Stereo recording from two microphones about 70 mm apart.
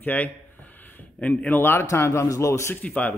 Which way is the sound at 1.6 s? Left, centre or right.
Left.